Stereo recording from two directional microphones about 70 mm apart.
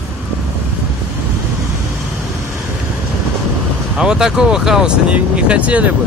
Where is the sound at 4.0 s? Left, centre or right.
Centre.